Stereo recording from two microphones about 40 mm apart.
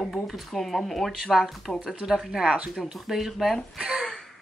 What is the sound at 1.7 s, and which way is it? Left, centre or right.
Speech, left.